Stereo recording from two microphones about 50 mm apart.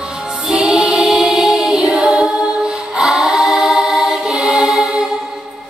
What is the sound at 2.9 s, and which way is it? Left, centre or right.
Choir, centre.